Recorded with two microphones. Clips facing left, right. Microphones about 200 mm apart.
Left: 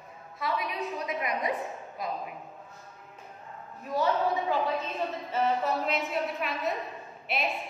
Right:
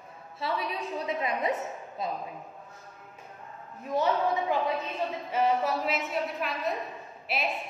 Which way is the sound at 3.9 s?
20° right (ahead or behind).